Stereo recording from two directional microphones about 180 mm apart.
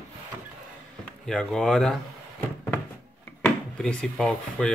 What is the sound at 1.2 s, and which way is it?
Speech, centre (ahead or behind).